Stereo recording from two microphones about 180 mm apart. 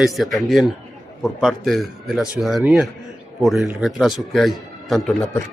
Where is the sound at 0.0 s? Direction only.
Centre (ahead or behind).